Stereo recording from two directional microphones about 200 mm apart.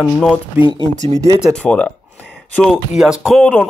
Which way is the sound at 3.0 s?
5° right (ahead or behind).